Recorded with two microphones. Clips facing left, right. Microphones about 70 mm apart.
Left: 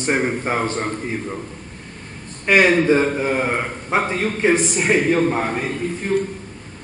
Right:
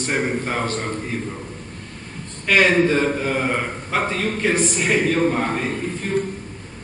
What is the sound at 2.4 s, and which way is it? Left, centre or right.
A man's voice, left.